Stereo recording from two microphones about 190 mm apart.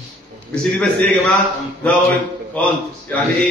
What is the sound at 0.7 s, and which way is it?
Speech, 5° left (ahead or behind).